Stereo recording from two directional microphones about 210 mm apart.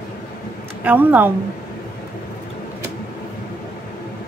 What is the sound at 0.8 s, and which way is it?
Speech, 10° right (ahead or behind).